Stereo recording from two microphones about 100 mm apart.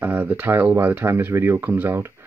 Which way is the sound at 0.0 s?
20° right (ahead or behind).